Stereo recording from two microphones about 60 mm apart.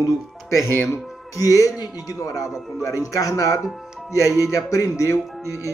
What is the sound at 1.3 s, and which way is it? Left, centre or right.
Speech, left.